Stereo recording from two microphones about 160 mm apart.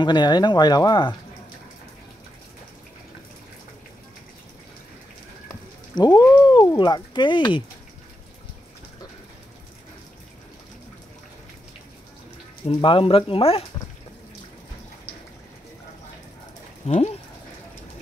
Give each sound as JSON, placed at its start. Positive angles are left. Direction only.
{"t": 0.0, "sound": "speech", "side_deg": 30}
{"t": 5.9, "sound": "speech", "side_deg": 25}
{"t": 12.6, "sound": "speech", "side_deg": 35}
{"t": 16.8, "sound": "speech", "side_deg": 40}